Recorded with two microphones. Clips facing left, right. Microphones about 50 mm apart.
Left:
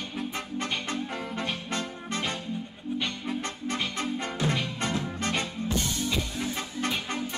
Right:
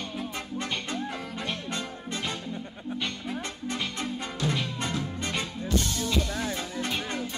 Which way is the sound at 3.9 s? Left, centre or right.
Left.